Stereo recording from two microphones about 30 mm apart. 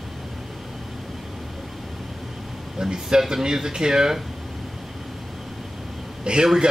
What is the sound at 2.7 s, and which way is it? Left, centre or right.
Speech, right.